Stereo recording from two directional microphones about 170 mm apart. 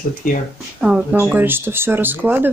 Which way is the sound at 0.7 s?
5° right (ahead or behind).